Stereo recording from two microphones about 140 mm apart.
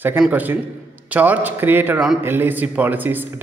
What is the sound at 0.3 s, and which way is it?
A man's voice, 15° right (ahead or behind).